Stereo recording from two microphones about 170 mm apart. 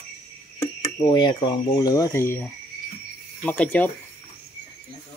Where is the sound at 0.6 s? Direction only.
25° left (ahead or behind); by 3.8 s 10° left (ahead or behind).